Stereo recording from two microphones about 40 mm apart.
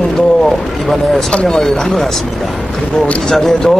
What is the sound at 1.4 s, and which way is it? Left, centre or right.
Speech, centre.